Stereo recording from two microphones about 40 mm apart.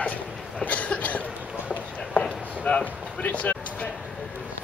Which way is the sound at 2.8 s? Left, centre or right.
Left.